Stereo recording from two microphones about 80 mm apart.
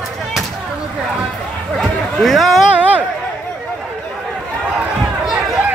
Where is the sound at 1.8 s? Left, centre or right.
Centre.